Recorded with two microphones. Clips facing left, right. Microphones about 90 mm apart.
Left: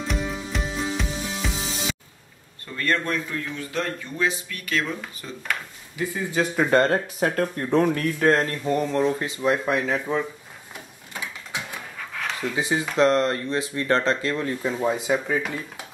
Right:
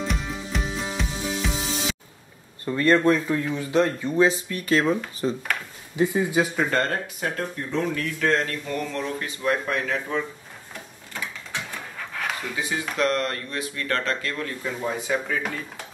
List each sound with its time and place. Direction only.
0.1 s music: centre (ahead or behind)
2.6 s speech: 25° right (ahead or behind)
4.3 s speech: 35° right (ahead or behind)
6.4 s speech: centre (ahead or behind)
6.7 s speech: 25° left (ahead or behind)
7.2 s speech: 50° left (ahead or behind)
8.2 s speech: 40° left (ahead or behind); by 10.2 s 10° left (ahead or behind)
11.1 s mechanisms: 10° left (ahead or behind)
12.1 s dog: centre (ahead or behind)
12.5 s speech: 25° left (ahead or behind)